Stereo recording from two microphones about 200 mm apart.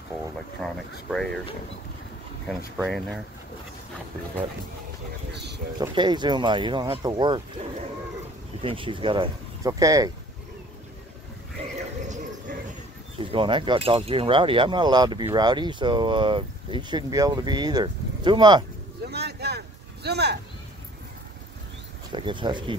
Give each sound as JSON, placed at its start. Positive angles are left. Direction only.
{"t": 0.6, "sound": "speech", "side_deg": 0}
{"t": 2.4, "sound": "speech", "side_deg": 0}
{"t": 5.3, "sound": "a sound", "side_deg": -55}
{"t": 5.8, "sound": "speech", "side_deg": -20}
{"t": 8.6, "sound": "speech", "side_deg": -25}
{"t": 11.6, "sound": "horse", "side_deg": -30}
{"t": 13.2, "sound": "speech", "side_deg": -25}
{"t": 19.0, "sound": "a sound", "side_deg": -55}
{"t": 22.1, "sound": "speech", "side_deg": -25}